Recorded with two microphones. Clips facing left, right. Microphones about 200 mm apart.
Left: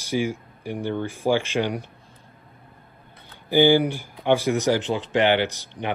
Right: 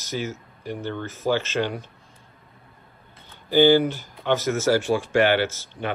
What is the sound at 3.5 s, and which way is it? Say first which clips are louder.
Speech: right 1 dB; 15° left (ahead or behind).